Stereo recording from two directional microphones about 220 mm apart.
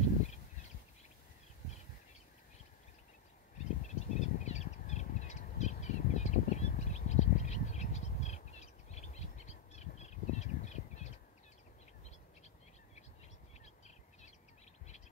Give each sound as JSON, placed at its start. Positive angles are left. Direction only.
{"t": 3.8, "sound": "crow", "side_deg": 30}